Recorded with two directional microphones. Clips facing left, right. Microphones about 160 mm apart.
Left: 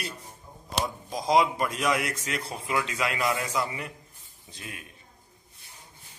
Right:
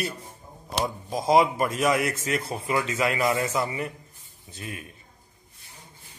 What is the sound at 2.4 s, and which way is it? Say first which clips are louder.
Speech: right 3 dB; 5° right (ahead or behind).